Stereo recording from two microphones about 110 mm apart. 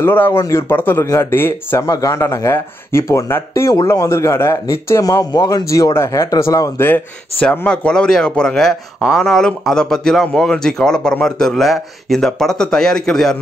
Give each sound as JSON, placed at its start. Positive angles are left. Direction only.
{"t": 0.0, "sound": "speech", "side_deg": 20}
{"t": 1.9, "sound": "speech", "side_deg": 30}
{"t": 6.9, "sound": "speech", "side_deg": 10}